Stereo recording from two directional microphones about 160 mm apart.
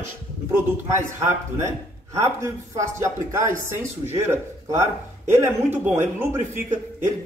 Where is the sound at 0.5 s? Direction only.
15° right (ahead or behind).